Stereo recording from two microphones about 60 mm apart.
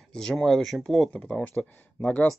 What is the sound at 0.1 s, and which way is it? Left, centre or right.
Speech, centre.